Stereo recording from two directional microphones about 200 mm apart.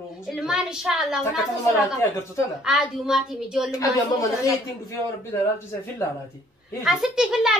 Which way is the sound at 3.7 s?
15° left (ahead or behind).